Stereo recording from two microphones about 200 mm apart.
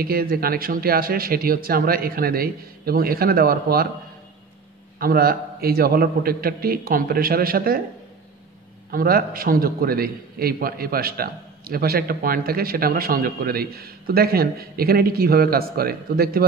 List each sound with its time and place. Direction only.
0.0 s a man's voice: 50° right (ahead or behind)
4.9 s a man's voice: 50° right (ahead or behind)
8.9 s a man's voice: 45° right (ahead or behind)